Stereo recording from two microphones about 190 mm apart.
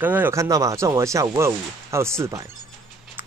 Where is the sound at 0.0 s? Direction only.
10° right (ahead or behind).